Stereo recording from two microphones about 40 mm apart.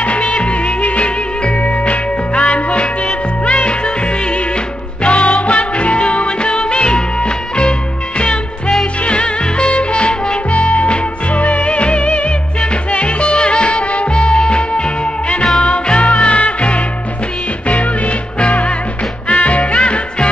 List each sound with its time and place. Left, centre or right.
0.0 s music: left